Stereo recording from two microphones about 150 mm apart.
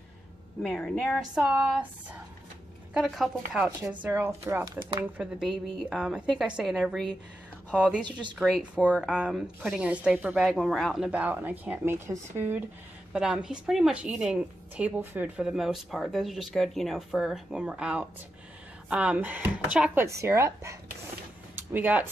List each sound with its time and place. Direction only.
0.6 s a woman's voice: 5° left (ahead or behind)
1.3 s a woman's voice: 10° right (ahead or behind)
2.9 s a woman's voice: 5° right (ahead or behind)
5.1 s a woman's voice: 5° right (ahead or behind)
8.0 s speech: 30° right (ahead or behind)
8.4 s a woman's voice: 5° left (ahead or behind); by 12.5 s 15° right (ahead or behind)
13.1 s a woman's voice: 5° right (ahead or behind)